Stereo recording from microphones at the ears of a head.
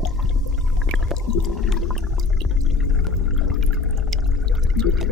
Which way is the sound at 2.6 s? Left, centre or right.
Left.